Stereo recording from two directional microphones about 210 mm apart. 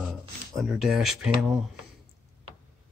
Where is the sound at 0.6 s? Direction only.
Centre (ahead or behind).